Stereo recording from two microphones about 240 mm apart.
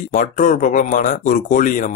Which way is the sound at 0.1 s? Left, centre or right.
Left.